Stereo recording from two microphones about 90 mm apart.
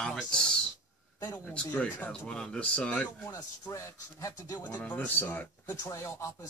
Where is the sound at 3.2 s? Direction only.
40° left (ahead or behind).